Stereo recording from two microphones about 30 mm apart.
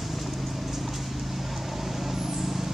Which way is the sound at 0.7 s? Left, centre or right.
Centre.